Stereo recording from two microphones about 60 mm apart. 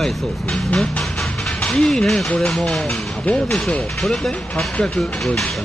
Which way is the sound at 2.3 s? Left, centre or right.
Centre.